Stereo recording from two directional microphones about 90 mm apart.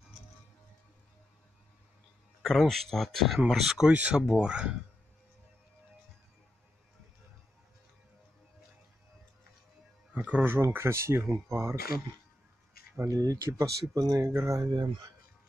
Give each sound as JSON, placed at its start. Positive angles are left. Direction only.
{"t": 2.4, "sound": "speech", "side_deg": 5}
{"t": 3.9, "sound": "speech", "side_deg": -15}
{"t": 10.1, "sound": "speech", "side_deg": -15}
{"t": 10.4, "sound": "speech", "side_deg": -25}
{"t": 12.9, "sound": "speech", "side_deg": -40}